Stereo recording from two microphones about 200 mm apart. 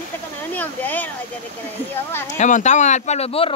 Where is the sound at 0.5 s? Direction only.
10° left (ahead or behind).